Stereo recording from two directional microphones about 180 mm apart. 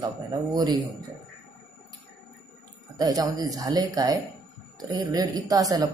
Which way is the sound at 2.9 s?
20° right (ahead or behind).